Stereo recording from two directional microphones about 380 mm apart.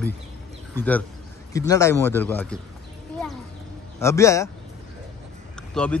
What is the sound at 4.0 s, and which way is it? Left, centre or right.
Speech, centre.